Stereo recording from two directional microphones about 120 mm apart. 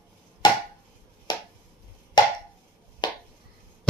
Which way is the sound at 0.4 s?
35° left (ahead or behind).